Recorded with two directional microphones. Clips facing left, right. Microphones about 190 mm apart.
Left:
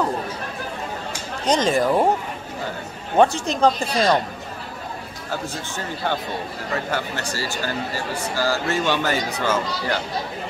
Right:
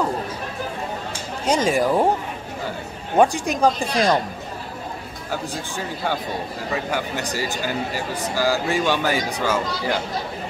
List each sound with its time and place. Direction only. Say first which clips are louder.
1.4 s speech: even; 10° right (ahead or behind)
3.2 s speech: even; 15° right (ahead or behind)
5.3 s speech: right 1 dB; 10° right (ahead or behind)